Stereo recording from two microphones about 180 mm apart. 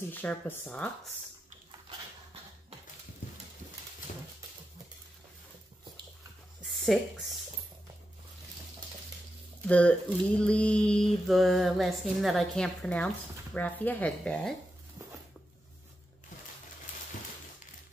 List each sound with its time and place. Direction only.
0.1 s speech: 10° left (ahead or behind)
6.6 s a sound: centre (ahead or behind)
9.7 s mantra: 5° left (ahead or behind)
13.6 s speech: 10° left (ahead or behind)